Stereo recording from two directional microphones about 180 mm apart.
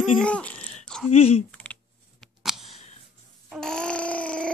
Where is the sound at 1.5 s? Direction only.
5° left (ahead or behind).